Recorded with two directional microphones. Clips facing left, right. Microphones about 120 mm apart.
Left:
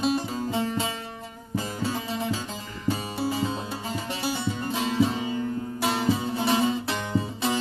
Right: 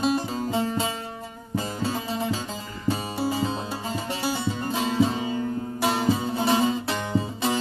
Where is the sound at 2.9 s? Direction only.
30° right (ahead or behind).